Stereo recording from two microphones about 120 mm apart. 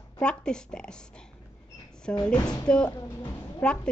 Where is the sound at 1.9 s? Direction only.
5° left (ahead or behind).